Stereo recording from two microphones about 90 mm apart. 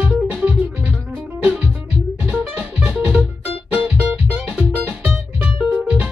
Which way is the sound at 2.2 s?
10° right (ahead or behind).